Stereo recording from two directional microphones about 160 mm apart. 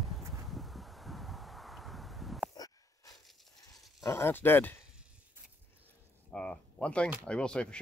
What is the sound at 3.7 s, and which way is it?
Speech, 20° left (ahead or behind).